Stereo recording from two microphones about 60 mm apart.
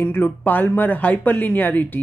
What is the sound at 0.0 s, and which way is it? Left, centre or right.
Speech, left.